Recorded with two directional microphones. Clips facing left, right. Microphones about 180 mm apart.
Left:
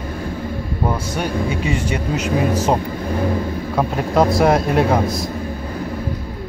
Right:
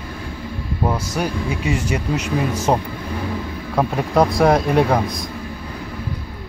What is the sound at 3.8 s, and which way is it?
A man's voice, centre (ahead or behind).